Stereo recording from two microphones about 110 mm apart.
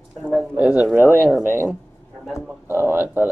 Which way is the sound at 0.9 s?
20° right (ahead or behind).